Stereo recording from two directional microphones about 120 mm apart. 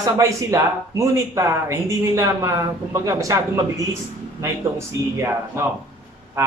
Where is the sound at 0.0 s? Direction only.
25° right (ahead or behind).